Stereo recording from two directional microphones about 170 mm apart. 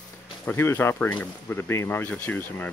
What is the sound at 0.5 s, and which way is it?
Speech, 15° left (ahead or behind).